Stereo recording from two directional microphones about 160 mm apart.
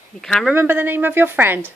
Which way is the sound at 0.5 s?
15° right (ahead or behind).